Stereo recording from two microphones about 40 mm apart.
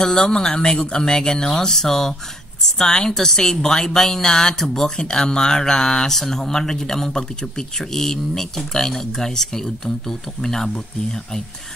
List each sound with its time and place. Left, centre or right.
0.0 s a woman's voice: centre